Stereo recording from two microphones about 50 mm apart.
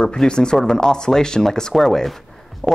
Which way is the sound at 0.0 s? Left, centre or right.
Centre.